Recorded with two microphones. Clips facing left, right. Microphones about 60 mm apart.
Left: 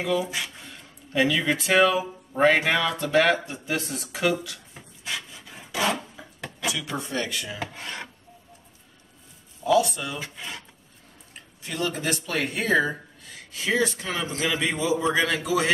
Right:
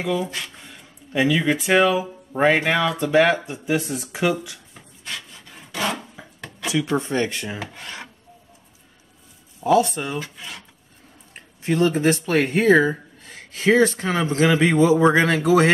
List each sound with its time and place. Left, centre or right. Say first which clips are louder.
0.2 s speech: right 1 dB; centre
0.7 s speech: right 1 dB; centre
4.7 s wood: left 1 dB; centre
7.0 s speech: right 6 dB; right
9.6 s speech: right 3 dB; right
10.1 s speech: right 4 dB; centre
11.3 s speech: right 11 dB; right